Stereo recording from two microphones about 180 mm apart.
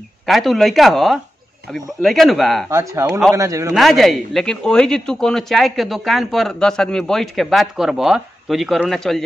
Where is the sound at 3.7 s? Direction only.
Centre (ahead or behind).